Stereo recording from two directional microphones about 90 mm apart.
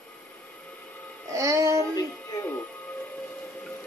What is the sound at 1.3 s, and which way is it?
Music, 35° right (ahead or behind).